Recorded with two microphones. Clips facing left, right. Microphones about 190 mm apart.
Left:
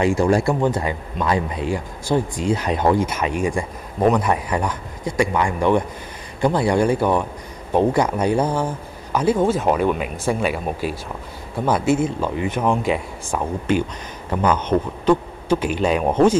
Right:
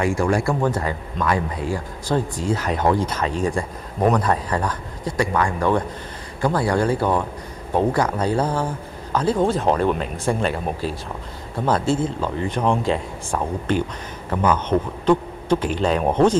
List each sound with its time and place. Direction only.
0.0 s speech: 20° left (ahead or behind)